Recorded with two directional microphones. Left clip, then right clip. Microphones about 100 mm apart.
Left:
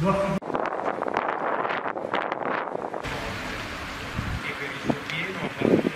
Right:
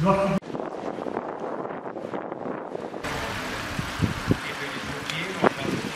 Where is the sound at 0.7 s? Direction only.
55° left (ahead or behind).